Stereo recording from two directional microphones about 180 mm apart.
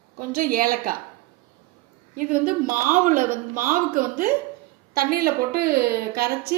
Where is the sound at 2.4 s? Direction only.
50° right (ahead or behind).